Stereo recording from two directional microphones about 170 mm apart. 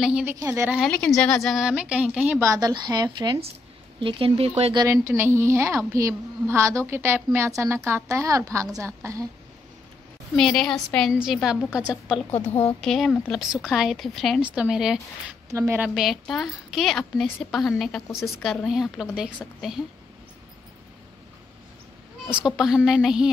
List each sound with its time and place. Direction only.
0.0 s a woman's voice: 10° right (ahead or behind)
0.7 s speech: centre (ahead or behind)
2.5 s speech: 25° right (ahead or behind)
4.0 s speech: 35° right (ahead or behind)
4.8 s a woman's voice: 15° right (ahead or behind)
10.3 s speech: 5° left (ahead or behind)
12.3 s a woman's voice: 40° left (ahead or behind)
12.8 s speech: centre (ahead or behind)
15.5 s a woman's voice: 15° right (ahead or behind)
15.9 s speech: centre (ahead or behind)
22.3 s speech: 5° right (ahead or behind)